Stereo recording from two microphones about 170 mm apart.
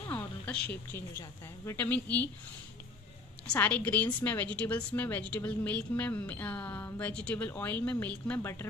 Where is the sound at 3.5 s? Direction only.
10° left (ahead or behind).